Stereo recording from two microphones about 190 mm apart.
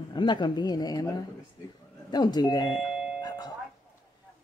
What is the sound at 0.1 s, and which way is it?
Speech, 25° left (ahead or behind).